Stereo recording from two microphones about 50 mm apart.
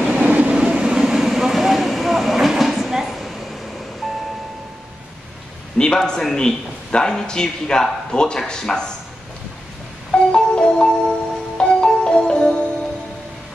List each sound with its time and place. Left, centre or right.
0.1 s train: right; by 3.3 s centre
4.0 s vehicle: centre
5.8 s a man's voice: centre
10.1 s music: centre